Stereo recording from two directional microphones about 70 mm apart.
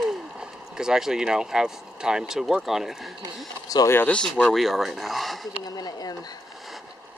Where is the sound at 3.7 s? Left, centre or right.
Left.